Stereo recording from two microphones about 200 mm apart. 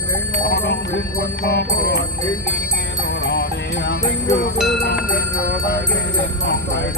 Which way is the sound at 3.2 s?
60° left (ahead or behind).